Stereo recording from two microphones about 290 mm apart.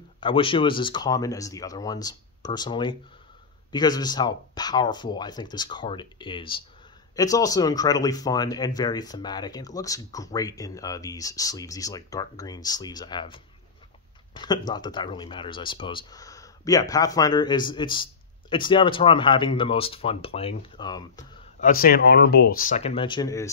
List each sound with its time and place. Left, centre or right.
0.2 s speech: centre
21.5 s speech: left; by 23.5 s centre